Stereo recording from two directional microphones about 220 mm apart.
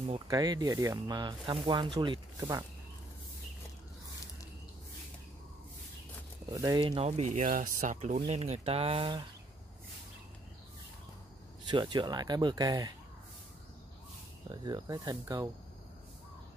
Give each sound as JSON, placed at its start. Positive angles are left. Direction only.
{"t": 0.3, "sound": "speech", "side_deg": -15}
{"t": 6.5, "sound": "speech", "side_deg": -15}
{"t": 11.7, "sound": "speech", "side_deg": -20}
{"t": 14.5, "sound": "speech", "side_deg": -20}